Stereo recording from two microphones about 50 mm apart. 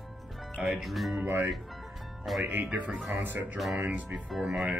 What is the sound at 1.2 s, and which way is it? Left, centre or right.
Speech, right.